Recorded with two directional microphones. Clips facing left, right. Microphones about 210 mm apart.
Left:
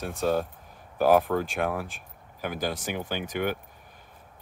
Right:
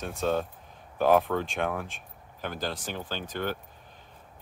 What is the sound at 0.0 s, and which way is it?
Speech, 5° left (ahead or behind).